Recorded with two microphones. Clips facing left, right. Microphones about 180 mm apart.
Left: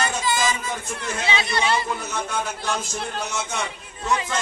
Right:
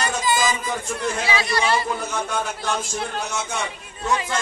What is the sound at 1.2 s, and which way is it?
Speech, 25° left (ahead or behind).